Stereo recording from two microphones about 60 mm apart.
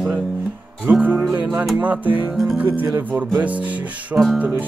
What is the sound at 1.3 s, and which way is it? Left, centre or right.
Speech, right.